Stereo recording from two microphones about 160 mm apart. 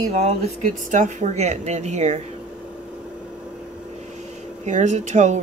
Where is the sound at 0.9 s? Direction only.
50° right (ahead or behind).